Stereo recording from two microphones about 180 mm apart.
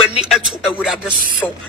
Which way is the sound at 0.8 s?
Centre (ahead or behind).